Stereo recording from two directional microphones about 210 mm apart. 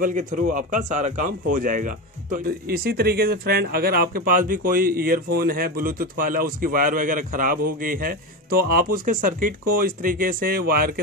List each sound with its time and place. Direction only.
0.0 s a man's voice: 35° right (ahead or behind)